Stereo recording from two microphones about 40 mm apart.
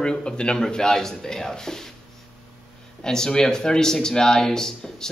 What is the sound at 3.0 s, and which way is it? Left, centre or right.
A man's voice, centre.